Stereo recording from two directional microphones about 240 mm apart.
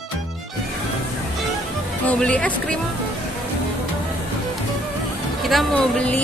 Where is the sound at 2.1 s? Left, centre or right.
Centre.